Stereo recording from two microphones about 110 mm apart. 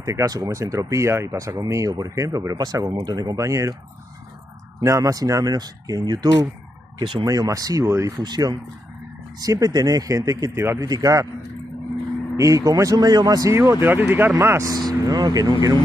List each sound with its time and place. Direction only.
0.0 s speech: 30° right (ahead or behind)
4.7 s speech: 30° right (ahead or behind); by 7.2 s 45° right (ahead or behind)
7.2 s speech: 30° right (ahead or behind)
8.2 s speech: 40° right (ahead or behind)
12.4 s speech: 30° right (ahead or behind)
14.7 s speech: 35° right (ahead or behind)